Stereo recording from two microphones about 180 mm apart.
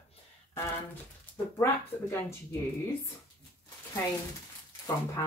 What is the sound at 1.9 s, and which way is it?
Speech, 10° left (ahead or behind).